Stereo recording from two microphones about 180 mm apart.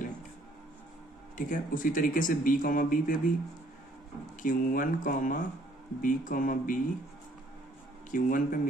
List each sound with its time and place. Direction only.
1.3 s speech: 50° left (ahead or behind)
4.4 s speech: 50° left (ahead or behind)
8.1 s speech: 45° left (ahead or behind)